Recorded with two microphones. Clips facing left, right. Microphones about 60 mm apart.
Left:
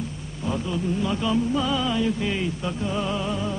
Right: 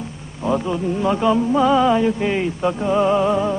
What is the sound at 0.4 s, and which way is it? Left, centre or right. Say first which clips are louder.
Music: right 7 dB; right.